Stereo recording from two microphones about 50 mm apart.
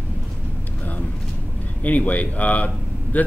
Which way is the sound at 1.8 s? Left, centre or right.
Left.